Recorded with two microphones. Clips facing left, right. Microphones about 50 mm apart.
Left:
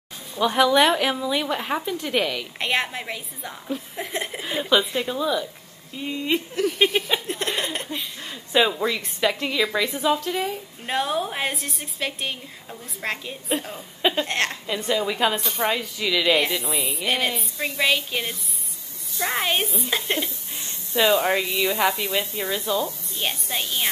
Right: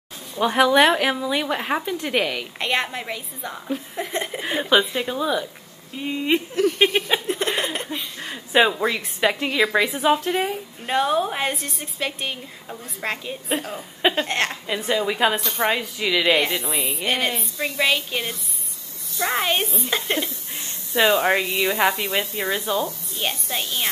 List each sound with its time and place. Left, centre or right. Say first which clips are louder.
0.4 s a woman's voice: right 2 dB; centre
2.6 s a woman's voice: right 1 dB; centre
4.5 s a woman's voice: right 2 dB; centre
6.5 s laughter: right 1 dB; centre
8.2 s a woman's voice: right 3 dB; right
9.9 s speech: right 3 dB; right
10.9 s a woman's voice: right 4 dB; centre
13.7 s a woman's voice: right 3 dB; centre
14.2 s a woman's voice: right 1 dB; centre
16.3 s a woman's voice: right 1 dB; centre
20.9 s a woman's voice: right 2 dB; centre
23.1 s a woman's voice: right 1 dB; centre